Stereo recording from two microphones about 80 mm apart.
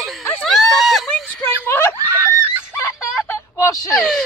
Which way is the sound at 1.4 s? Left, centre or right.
Left.